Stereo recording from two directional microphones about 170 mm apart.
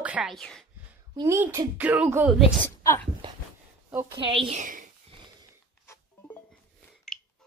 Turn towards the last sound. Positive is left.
turn(degrees=10)  # may be behind; listen again after turning